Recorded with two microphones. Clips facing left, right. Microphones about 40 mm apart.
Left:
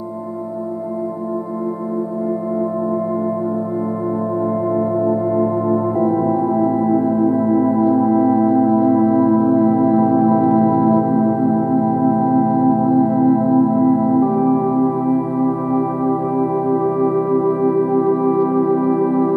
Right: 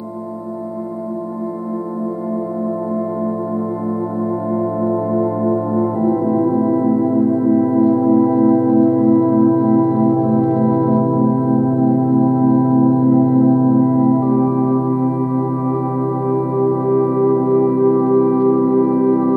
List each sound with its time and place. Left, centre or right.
4.6 s music: centre
11.1 s music: left